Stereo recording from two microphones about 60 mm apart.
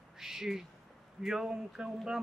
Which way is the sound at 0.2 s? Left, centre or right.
Centre.